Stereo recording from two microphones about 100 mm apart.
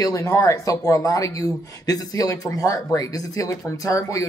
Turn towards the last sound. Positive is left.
turn(degrees=35)  # may be behind; listen again after turning